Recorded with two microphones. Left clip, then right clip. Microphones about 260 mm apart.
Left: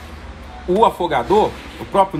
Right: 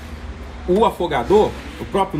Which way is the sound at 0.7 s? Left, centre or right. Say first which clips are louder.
Left 2 dB; left.